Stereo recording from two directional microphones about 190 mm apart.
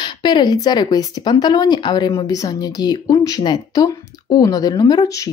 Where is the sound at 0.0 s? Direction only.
25° left (ahead or behind).